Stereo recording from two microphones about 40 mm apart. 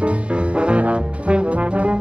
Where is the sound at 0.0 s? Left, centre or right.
Right.